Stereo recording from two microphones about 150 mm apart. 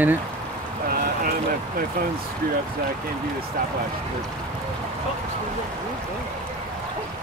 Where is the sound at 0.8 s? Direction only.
70° right (ahead or behind).